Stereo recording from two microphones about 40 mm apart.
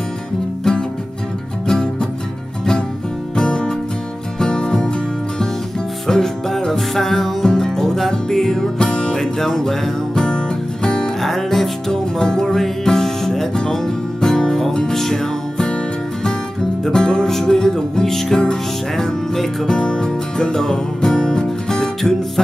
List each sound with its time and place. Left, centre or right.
1.7 s music: centre
3.3 s music: left
6.0 s music: centre
10.2 s music: left
11.2 s music: centre
11.9 s music: centre
16.8 s music: centre